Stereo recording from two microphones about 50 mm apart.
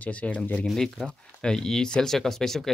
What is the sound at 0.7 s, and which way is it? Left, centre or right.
Speech, centre.